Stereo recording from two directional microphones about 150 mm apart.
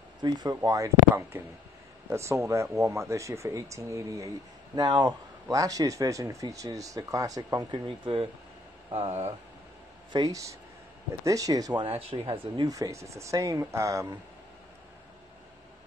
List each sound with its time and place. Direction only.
0.2 s a man's voice: 25° right (ahead or behind); by 9.3 s 40° right (ahead or behind)
10.1 s a man's voice: 25° right (ahead or behind)
12.3 s a man's voice: 25° right (ahead or behind)